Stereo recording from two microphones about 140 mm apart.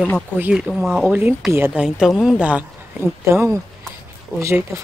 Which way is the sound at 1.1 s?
15° right (ahead or behind).